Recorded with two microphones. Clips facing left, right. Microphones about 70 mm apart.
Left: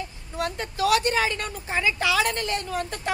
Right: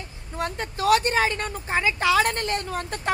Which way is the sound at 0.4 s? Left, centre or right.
Right.